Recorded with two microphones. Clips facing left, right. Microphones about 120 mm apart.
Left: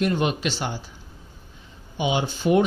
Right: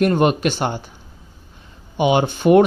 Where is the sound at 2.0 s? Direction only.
60° right (ahead or behind).